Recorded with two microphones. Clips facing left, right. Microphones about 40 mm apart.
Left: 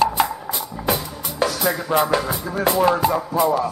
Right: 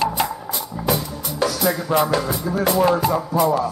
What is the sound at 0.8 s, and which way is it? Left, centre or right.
Music, left.